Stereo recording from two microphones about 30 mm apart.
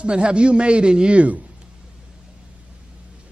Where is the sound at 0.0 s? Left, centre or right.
Right.